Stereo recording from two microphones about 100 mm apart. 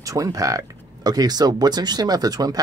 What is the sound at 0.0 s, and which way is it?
Speech, 35° right (ahead or behind).